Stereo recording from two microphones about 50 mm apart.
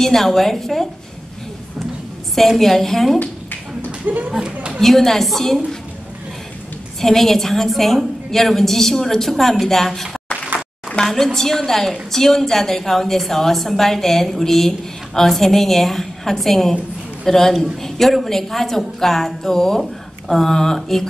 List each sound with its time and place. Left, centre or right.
0.0 s a woman's voice: centre
2.3 s a woman's voice: centre
4.0 s speech: right
4.7 s a woman's voice: centre
7.0 s a woman's voice: centre
11.0 s a woman's voice: left
11.3 s a woman's voice: centre